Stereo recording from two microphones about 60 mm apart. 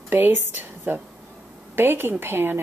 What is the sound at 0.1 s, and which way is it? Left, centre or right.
A woman's voice, right.